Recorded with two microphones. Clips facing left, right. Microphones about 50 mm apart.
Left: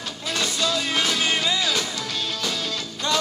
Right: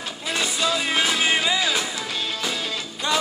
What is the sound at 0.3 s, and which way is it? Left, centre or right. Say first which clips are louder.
Music: right 1 dB; centre.